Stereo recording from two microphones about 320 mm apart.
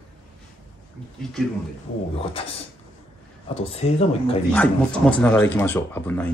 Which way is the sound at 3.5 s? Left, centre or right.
Centre.